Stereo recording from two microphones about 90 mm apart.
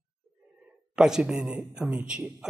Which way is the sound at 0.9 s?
5° right (ahead or behind).